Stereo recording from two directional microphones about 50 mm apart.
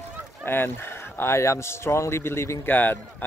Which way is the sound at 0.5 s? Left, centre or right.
Left.